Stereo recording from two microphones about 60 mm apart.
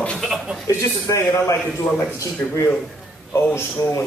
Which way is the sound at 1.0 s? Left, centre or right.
Left.